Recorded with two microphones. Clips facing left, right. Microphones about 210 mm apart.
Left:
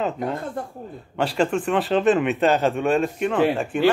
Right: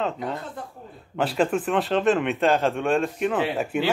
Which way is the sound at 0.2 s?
50° left (ahead or behind).